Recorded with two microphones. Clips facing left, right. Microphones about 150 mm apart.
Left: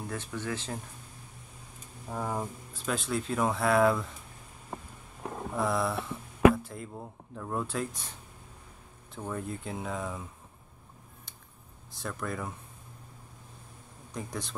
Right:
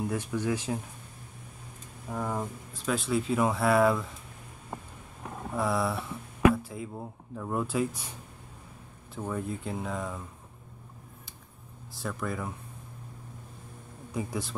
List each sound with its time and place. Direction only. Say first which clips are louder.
0.0 s speech: right 6 dB; 10° right (ahead or behind)
2.0 s speech: right 1 dB; 10° left (ahead or behind)
5.6 s speech: right 1 dB; centre (ahead or behind)
9.1 s speech: right 3 dB; centre (ahead or behind)
11.9 s speech: right 2 dB; centre (ahead or behind)
14.1 s speech: right 4 dB; 5° right (ahead or behind)